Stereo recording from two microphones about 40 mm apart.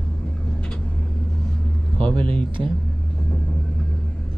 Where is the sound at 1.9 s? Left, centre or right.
Left.